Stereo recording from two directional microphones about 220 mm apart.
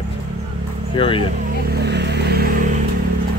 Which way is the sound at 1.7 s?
50° right (ahead or behind).